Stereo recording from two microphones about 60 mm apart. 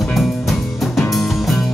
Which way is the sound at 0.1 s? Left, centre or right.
Centre.